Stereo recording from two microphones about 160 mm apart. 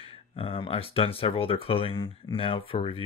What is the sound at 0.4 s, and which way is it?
Speech, 35° left (ahead or behind).